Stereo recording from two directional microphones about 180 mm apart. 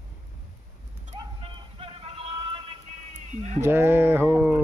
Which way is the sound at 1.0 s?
30° right (ahead or behind).